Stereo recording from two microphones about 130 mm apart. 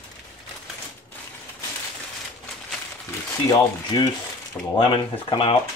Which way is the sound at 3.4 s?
30° left (ahead or behind).